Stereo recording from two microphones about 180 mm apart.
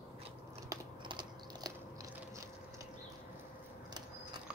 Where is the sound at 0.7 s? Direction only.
25° right (ahead or behind).